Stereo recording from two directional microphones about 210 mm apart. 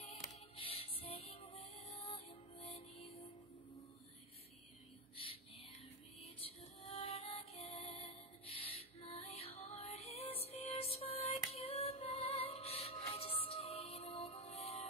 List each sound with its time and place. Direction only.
0.6 s music: 25° left (ahead or behind)
5.1 s a sound: 25° left (ahead or behind)
6.2 s music: 30° left (ahead or behind)